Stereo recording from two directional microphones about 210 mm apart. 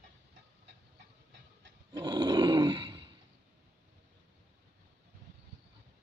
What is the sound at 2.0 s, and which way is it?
Roar, 20° right (ahead or behind).